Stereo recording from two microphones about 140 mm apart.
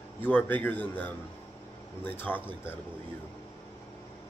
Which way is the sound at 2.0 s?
15° left (ahead or behind).